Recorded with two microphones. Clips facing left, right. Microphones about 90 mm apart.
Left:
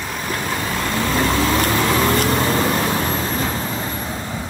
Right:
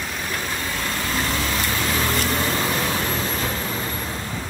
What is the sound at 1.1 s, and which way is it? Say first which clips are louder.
Vehicle: left 8 dB; 45° left (ahead or behind).